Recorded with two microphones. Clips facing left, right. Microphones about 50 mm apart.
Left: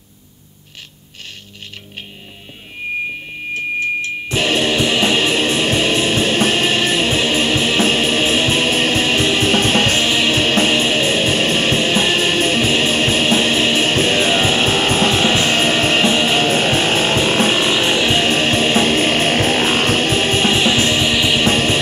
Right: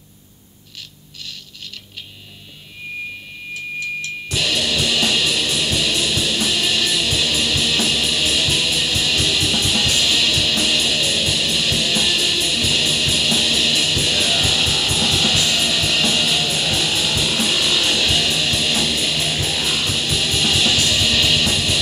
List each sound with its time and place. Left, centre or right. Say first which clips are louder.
3.5 s music: left 7 dB; left
21.5 s music: left 6 dB; left